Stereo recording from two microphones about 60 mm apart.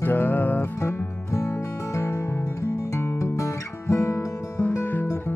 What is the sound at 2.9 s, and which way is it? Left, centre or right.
Guitar, left.